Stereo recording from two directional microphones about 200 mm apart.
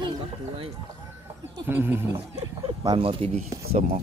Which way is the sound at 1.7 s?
10° right (ahead or behind).